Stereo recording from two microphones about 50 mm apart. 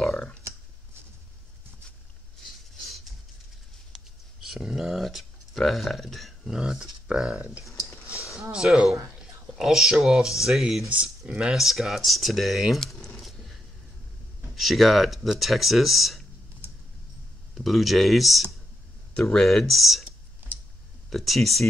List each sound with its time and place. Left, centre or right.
3.9 s a sound: centre
6.5 s speech: centre
7.3 s speech: right
7.6 s a sound: left
9.6 s speech: centre
10.9 s speech: centre
11.5 s speech: centre
13.1 s a sound: centre
14.5 s speech: centre
17.6 s speech: centre
20.4 s a sound: right
21.1 s speech: centre